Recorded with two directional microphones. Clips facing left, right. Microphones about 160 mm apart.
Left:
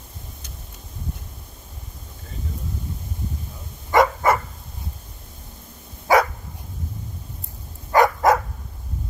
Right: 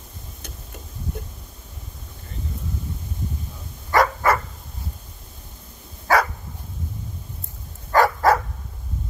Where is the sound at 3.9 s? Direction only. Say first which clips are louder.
Left 2 dB; 20° left (ahead or behind).